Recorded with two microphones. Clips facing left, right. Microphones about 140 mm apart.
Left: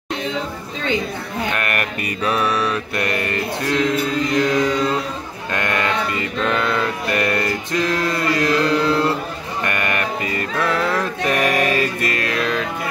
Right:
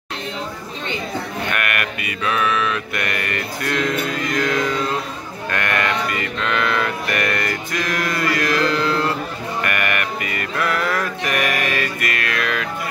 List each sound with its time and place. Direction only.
1.5 s mantra: 30° left (ahead or behind)
5.5 s sheep: 20° left (ahead or behind)
6.4 s music: 30° left (ahead or behind)